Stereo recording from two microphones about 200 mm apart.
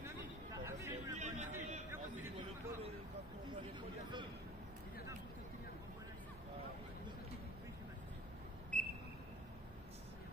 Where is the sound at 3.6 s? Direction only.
25° right (ahead or behind).